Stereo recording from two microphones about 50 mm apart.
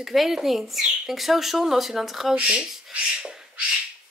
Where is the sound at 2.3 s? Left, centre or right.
Centre.